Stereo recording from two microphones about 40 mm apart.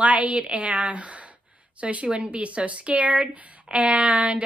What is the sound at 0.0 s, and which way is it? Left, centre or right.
Speech, right.